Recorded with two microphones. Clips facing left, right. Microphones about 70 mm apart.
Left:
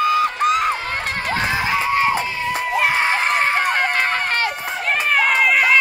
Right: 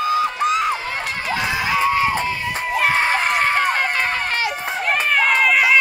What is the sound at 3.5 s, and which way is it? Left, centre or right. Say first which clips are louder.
Run: even; left.